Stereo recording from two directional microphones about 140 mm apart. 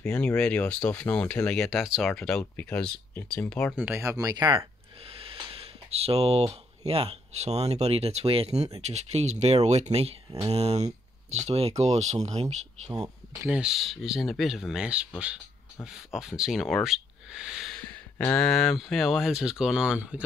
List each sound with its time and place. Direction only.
0.4 s speech: 10° left (ahead or behind)
3.7 s speech: 10° right (ahead or behind)
4.0 s speech: 25° right (ahead or behind); by 12.9 s 50° right (ahead or behind)
12.9 s speech: 25° right (ahead or behind)
13.5 s speech: 5° right (ahead or behind)
18.1 s speech: 10° left (ahead or behind); by 20.2 s 5° right (ahead or behind)